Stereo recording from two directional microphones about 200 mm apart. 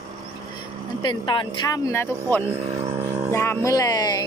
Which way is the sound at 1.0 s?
25° left (ahead or behind).